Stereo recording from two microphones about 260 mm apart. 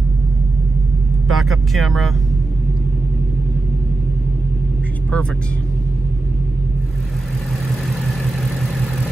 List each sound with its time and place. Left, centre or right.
1.3 s speech: centre